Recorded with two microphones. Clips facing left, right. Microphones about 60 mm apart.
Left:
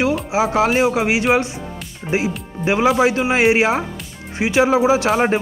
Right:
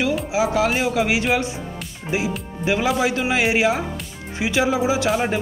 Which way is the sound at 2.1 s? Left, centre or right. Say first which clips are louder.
Left 3 dB; left.